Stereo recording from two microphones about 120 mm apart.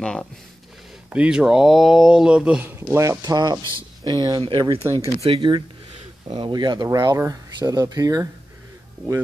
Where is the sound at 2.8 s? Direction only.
25° right (ahead or behind).